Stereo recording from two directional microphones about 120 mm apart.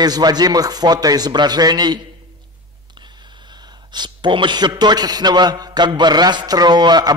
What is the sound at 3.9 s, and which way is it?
A man's voice, 40° right (ahead or behind).